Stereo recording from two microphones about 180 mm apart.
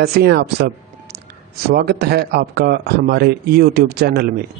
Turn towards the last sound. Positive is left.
turn(degrees=-60)  # may be behind; listen again after turning